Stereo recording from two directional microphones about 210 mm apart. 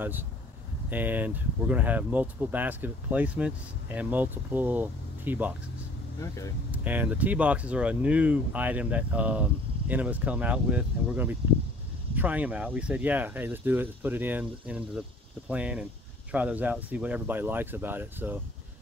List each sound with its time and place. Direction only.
0.8 s speech: 10° right (ahead or behind)
6.1 s speech: 15° left (ahead or behind)
6.7 s speech: 10° right (ahead or behind)